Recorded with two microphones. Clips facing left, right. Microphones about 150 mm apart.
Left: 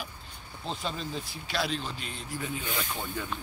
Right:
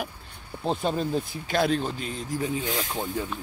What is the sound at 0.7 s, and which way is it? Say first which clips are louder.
Speech: right 9 dB; 50° right (ahead or behind).